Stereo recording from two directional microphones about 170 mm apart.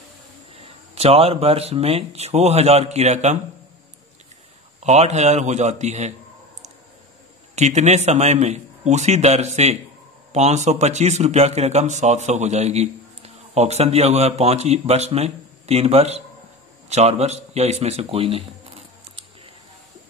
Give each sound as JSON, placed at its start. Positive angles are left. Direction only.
{"t": 0.6, "sound": "speech", "side_deg": -35}
{"t": 4.7, "sound": "a man's voice", "side_deg": -40}
{"t": 7.5, "sound": "speech", "side_deg": -40}